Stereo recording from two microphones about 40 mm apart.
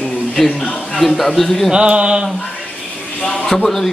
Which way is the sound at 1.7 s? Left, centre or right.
Right.